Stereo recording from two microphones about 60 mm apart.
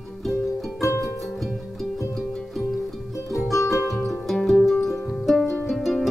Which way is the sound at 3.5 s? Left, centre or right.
Left.